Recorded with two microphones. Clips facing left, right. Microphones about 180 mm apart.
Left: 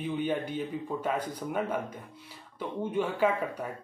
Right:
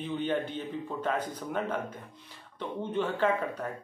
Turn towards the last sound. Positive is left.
turn(degrees=10)  # may be behind; listen again after turning